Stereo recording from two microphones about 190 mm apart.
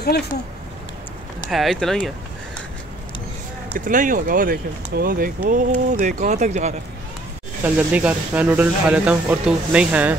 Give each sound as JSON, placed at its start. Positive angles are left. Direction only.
{"t": 0.0, "sound": "speech", "side_deg": 55}
{"t": 1.5, "sound": "speech", "side_deg": 0}
{"t": 3.7, "sound": "speech", "side_deg": -45}
{"t": 7.6, "sound": "speech", "side_deg": -5}